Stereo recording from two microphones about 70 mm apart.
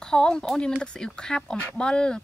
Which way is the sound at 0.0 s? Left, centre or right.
Centre.